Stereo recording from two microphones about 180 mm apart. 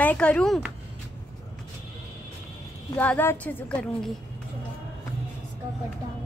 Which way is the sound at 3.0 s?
10° left (ahead or behind).